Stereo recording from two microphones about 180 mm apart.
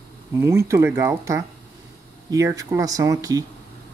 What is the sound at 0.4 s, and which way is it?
Speech, 15° right (ahead or behind).